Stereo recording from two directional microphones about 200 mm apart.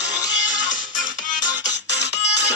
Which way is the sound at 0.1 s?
65° left (ahead or behind).